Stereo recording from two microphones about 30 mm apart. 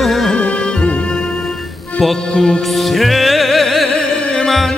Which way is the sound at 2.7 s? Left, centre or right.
Centre.